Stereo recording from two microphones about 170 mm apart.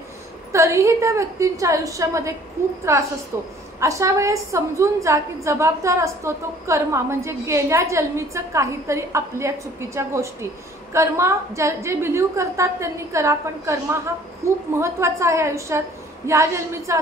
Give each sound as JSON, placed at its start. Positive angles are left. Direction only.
{"t": 0.5, "sound": "a woman's voice", "side_deg": -15}